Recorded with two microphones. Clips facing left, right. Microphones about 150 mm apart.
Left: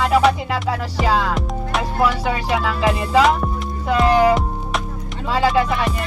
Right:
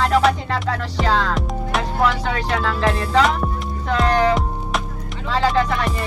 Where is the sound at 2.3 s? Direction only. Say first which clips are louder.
Left 1 dB; 10° left (ahead or behind).